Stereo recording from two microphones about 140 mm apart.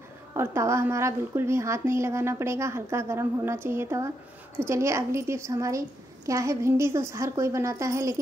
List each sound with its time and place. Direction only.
0.3 s speech: 20° right (ahead or behind)